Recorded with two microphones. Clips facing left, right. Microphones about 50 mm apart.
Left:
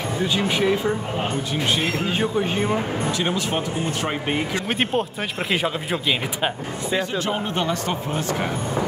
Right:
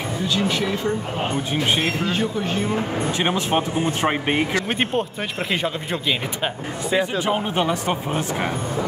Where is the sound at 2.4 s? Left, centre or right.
Centre.